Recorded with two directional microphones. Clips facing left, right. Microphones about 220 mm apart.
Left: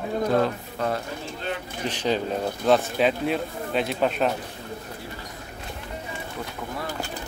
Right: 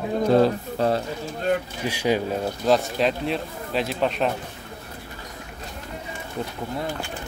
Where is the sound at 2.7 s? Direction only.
Centre (ahead or behind).